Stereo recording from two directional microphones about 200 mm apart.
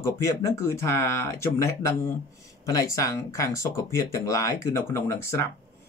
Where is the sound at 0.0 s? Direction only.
15° left (ahead or behind).